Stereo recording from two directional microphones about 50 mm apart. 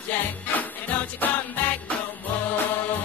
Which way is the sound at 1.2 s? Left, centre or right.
Left.